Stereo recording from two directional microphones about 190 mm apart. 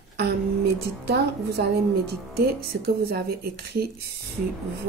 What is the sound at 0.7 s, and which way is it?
Speech, 55° right (ahead or behind).